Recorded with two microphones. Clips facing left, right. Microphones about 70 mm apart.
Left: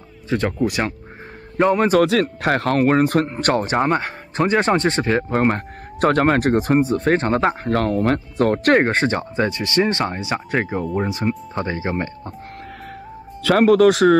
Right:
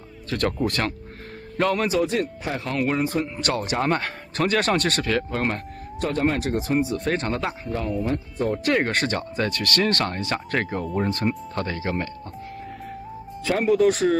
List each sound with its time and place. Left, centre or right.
0.3 s speech: centre
2.0 s speech: left
2.8 s speech: left
3.8 s speech: centre
5.9 s speech: left
7.6 s speech: left
8.8 s speech: left
13.4 s speech: left